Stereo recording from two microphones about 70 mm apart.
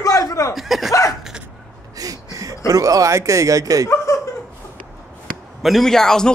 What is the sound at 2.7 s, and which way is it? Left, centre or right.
Speech, right.